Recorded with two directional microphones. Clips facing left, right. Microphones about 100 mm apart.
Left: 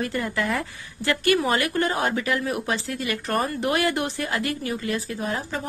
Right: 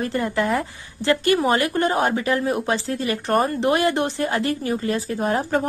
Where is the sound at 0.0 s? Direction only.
30° right (ahead or behind).